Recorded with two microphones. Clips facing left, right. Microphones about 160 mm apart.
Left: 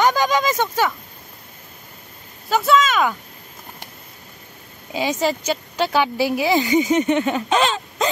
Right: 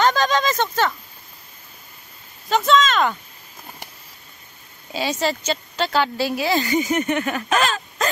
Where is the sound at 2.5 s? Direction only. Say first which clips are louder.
Even; 5° left (ahead or behind).